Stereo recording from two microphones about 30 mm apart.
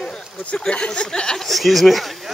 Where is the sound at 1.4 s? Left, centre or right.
Centre.